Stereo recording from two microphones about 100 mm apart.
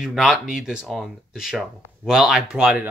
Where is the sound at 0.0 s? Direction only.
Centre (ahead or behind).